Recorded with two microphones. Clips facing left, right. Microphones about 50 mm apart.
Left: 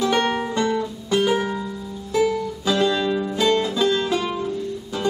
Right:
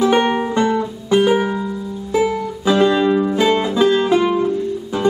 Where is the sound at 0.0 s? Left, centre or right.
Centre.